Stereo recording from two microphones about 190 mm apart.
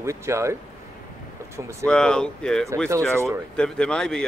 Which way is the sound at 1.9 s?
5° left (ahead or behind).